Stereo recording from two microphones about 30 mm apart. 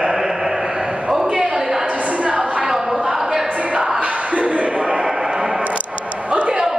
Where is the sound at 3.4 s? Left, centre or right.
Right.